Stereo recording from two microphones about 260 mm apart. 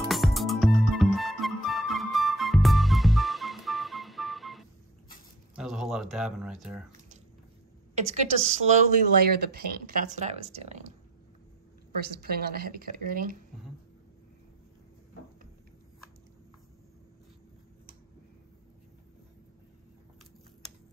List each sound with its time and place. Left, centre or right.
0.1 s music: centre
5.6 s a sound: centre
7.9 s speech: right
9.2 s speech: right
12.2 s a woman's voice: right